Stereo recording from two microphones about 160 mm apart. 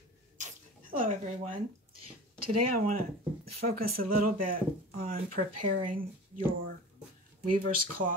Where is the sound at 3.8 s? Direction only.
65° right (ahead or behind).